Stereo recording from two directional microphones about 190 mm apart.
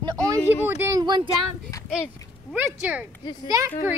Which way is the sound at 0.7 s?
15° right (ahead or behind).